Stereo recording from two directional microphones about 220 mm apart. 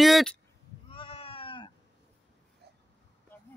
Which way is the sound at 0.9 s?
25° left (ahead or behind).